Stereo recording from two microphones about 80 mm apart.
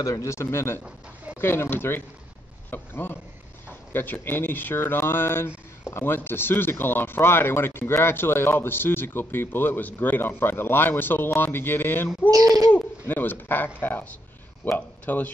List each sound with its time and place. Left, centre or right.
0.0 s speech: left
0.8 s a sound: centre
1.4 s speech: left
12.3 s speech: right
12.7 s speech: left